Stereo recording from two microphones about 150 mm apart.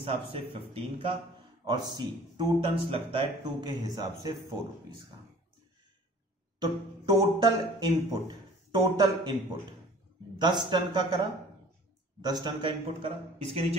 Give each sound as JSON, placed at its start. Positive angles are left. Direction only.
{"t": 0.0, "sound": "a man's voice", "side_deg": -40}
{"t": 6.6, "sound": "speech", "side_deg": -30}
{"t": 10.4, "sound": "a man's voice", "side_deg": -30}